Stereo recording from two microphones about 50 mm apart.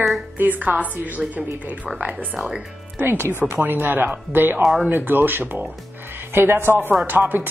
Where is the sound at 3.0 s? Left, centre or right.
Right.